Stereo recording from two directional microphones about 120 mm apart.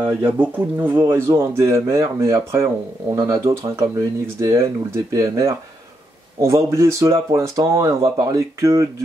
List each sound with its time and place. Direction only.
0.0 s speech: 15° right (ahead or behind)